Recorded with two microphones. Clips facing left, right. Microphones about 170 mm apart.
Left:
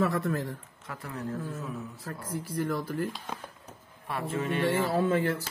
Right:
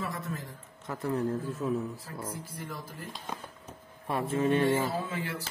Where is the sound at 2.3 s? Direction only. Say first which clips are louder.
Left 10 dB; 70° left (ahead or behind).